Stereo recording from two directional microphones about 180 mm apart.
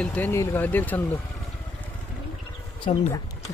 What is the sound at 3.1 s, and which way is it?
Speech, 20° left (ahead or behind).